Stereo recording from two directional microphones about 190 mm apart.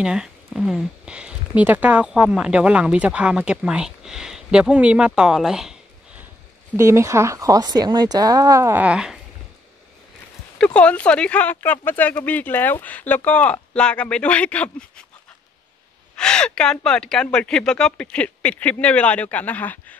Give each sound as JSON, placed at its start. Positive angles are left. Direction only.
{"t": 0.0, "sound": "speech", "side_deg": -5}
{"t": 6.8, "sound": "speech", "side_deg": -15}
{"t": 10.6, "sound": "speech", "side_deg": 5}
{"t": 16.2, "sound": "speech", "side_deg": 5}